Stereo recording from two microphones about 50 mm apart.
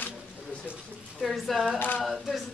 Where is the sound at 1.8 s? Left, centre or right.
Left.